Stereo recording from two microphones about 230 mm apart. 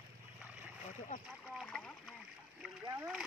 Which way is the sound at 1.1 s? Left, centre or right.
Left.